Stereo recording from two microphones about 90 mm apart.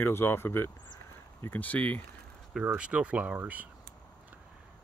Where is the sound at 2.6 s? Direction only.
15° right (ahead or behind).